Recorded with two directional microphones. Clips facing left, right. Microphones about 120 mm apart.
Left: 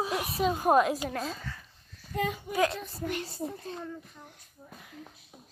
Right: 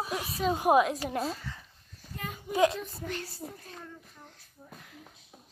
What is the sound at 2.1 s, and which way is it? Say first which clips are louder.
Speech: left 10 dB; 90° left.